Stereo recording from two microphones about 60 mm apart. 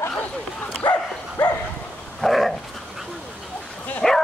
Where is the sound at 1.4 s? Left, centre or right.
Left.